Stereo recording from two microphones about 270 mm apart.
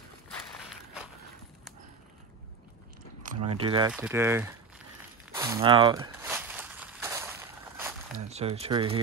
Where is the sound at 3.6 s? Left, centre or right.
Centre.